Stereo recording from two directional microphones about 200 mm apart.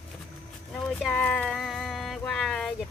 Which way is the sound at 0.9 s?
5° left (ahead or behind).